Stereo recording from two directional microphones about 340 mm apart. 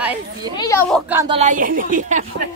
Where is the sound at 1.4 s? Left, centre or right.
Right.